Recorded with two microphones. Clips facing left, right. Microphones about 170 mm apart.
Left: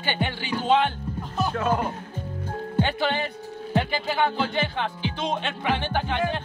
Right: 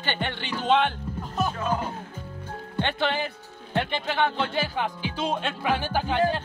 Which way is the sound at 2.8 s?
Centre (ahead or behind).